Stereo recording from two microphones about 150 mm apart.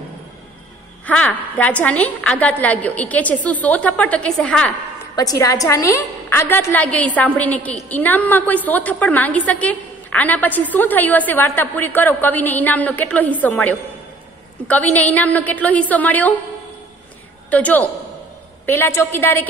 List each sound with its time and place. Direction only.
1.0 s a woman's voice: 10° left (ahead or behind)
5.1 s a woman's voice: 25° left (ahead or behind)
17.5 s a woman's voice: 10° left (ahead or behind)